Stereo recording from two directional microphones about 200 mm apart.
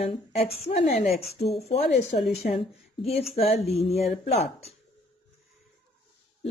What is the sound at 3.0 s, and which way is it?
A woman's voice, 30° left (ahead or behind).